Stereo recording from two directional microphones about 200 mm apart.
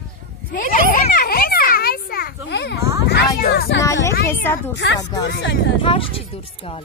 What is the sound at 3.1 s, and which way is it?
Speech, 55° left (ahead or behind).